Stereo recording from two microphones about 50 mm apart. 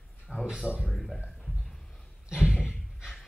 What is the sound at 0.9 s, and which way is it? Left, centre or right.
Speech, centre.